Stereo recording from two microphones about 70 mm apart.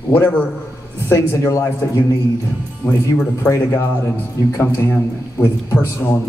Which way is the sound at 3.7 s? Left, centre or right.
Left.